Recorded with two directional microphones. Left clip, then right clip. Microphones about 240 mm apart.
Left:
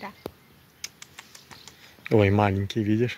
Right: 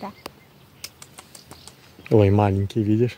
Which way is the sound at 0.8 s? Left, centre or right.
Right.